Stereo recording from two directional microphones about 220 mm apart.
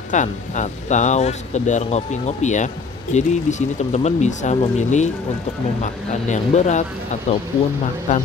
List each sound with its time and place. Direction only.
0.1 s speech: 35° left (ahead or behind)